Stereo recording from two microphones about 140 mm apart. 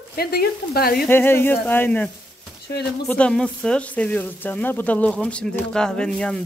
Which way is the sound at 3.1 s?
5° left (ahead or behind).